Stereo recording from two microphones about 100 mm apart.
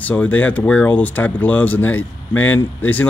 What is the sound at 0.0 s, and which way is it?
Speech, 15° left (ahead or behind).